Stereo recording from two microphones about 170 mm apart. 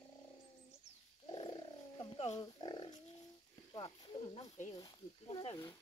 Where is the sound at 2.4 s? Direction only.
25° left (ahead or behind).